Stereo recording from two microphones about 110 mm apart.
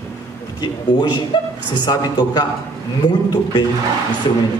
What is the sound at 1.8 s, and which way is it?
Speech, 40° left (ahead or behind).